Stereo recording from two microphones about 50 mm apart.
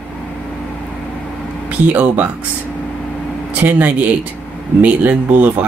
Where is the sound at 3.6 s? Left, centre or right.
Right.